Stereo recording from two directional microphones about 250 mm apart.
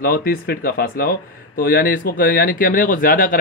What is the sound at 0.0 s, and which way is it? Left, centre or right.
Speech, left.